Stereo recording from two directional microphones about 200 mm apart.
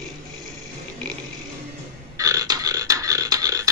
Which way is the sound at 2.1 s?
15° right (ahead or behind).